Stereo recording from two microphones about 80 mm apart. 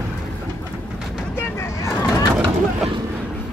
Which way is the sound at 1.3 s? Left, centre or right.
Left.